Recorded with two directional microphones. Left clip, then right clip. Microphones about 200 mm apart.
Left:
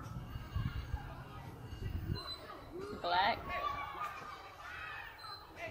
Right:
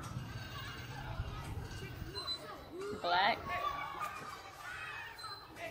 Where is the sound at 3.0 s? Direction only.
10° left (ahead or behind).